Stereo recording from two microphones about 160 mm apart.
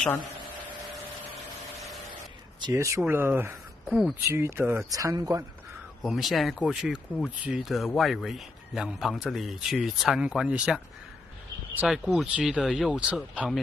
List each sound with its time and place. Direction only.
2.7 s speech: 15° right (ahead or behind)
6.0 s a man's voice: centre (ahead or behind)